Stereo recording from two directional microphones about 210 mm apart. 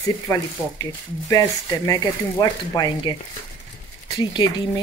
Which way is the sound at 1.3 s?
15° left (ahead or behind).